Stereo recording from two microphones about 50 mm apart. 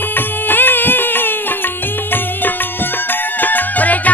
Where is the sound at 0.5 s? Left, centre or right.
Left.